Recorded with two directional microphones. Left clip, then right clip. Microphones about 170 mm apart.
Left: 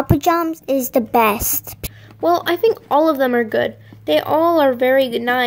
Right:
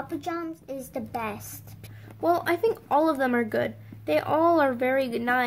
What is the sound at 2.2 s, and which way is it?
Speech, 5° left (ahead or behind).